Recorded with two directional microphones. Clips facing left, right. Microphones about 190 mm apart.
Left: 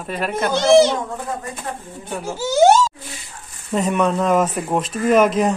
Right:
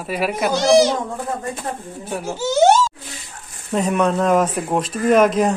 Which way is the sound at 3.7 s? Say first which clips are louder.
Even; centre (ahead or behind).